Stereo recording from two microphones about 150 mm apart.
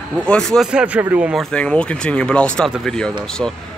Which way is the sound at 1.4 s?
5° left (ahead or behind).